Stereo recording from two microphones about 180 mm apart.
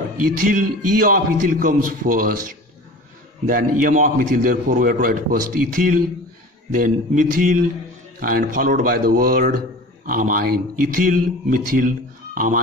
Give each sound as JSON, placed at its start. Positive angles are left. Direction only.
{"t": 0.2, "sound": "a man's voice", "side_deg": -50}
{"t": 3.4, "sound": "a man's voice", "side_deg": -50}